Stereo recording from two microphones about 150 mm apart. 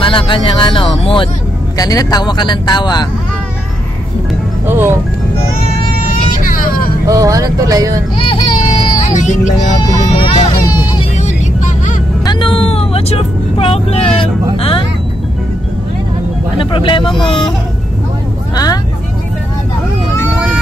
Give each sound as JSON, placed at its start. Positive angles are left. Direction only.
{"t": 0.0, "sound": "speech", "side_deg": 35}
{"t": 1.8, "sound": "speech", "side_deg": 25}
{"t": 4.6, "sound": "speech", "side_deg": -15}
{"t": 6.3, "sound": "vehicle", "side_deg": 65}
{"t": 7.1, "sound": "speech", "side_deg": -25}
{"t": 8.2, "sound": "a sound", "side_deg": 35}
{"t": 9.2, "sound": "speech", "side_deg": 55}
{"t": 9.6, "sound": "speech", "side_deg": 30}
{"t": 11.1, "sound": "vehicle", "side_deg": 50}
{"t": 12.3, "sound": "vehicle", "side_deg": 35}
{"t": 14.6, "sound": "speech", "side_deg": 35}
{"t": 16.5, "sound": "speech", "side_deg": 35}
{"t": 18.5, "sound": "speech", "side_deg": 25}